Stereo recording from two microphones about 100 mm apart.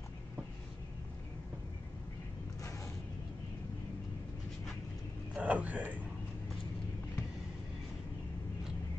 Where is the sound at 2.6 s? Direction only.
30° left (ahead or behind).